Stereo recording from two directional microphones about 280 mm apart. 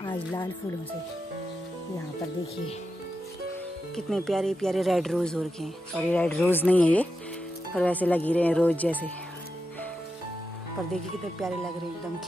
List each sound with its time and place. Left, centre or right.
0.0 s speech: centre
3.9 s speech: centre
10.9 s speech: centre